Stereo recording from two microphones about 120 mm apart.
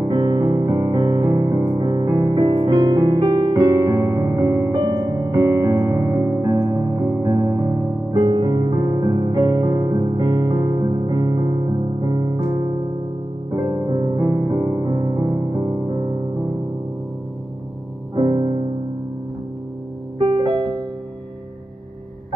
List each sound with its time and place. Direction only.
0.0 s music: 40° right (ahead or behind)
3.2 s music: 50° right (ahead or behind)
3.6 s music: 30° right (ahead or behind)
13.6 s music: 30° right (ahead or behind)
18.1 s music: 35° right (ahead or behind)
20.2 s music: 40° right (ahead or behind)